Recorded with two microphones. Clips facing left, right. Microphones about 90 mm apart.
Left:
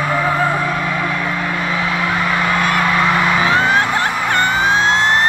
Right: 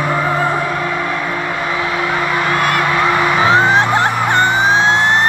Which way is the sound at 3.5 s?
25° right (ahead or behind).